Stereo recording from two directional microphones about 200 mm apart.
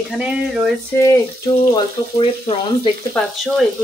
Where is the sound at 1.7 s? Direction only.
25° left (ahead or behind).